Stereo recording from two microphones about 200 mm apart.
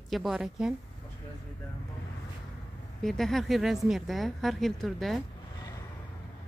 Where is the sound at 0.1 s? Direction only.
Centre (ahead or behind).